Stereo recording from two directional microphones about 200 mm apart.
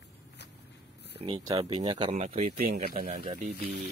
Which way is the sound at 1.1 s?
25° right (ahead or behind).